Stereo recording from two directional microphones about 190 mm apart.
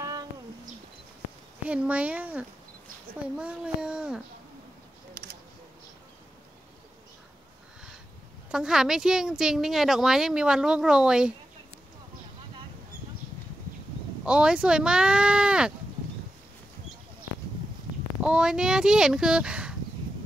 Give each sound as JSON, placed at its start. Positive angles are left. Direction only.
{"t": 1.7, "sound": "speech", "side_deg": -5}
{"t": 5.1, "sound": "a sound", "side_deg": -65}
{"t": 8.5, "sound": "speech", "side_deg": -5}
{"t": 14.2, "sound": "speech", "side_deg": -5}
{"t": 18.2, "sound": "speech", "side_deg": -5}